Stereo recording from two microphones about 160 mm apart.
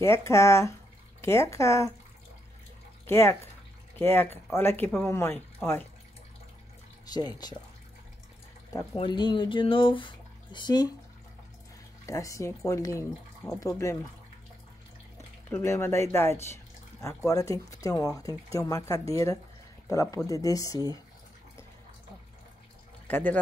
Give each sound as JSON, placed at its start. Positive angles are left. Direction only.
{"t": 0.0, "sound": "speech", "side_deg": 15}
{"t": 3.1, "sound": "speech", "side_deg": 15}
{"t": 7.1, "sound": "speech", "side_deg": 25}
{"t": 8.9, "sound": "speech", "side_deg": 30}
{"t": 12.1, "sound": "speech", "side_deg": 20}
{"t": 15.5, "sound": "speech", "side_deg": 15}
{"t": 23.0, "sound": "speech", "side_deg": 10}